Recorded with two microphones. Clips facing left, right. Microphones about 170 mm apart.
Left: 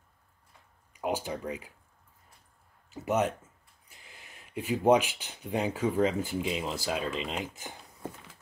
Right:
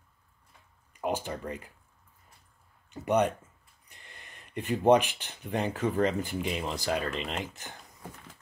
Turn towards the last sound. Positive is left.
turn(degrees=10)  # may be behind; listen again after turning